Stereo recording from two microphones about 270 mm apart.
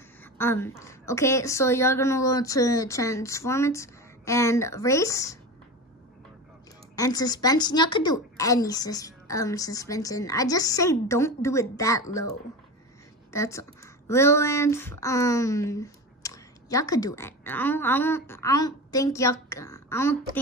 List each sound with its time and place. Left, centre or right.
0.2 s a woman's voice: centre
7.0 s a woman's voice: centre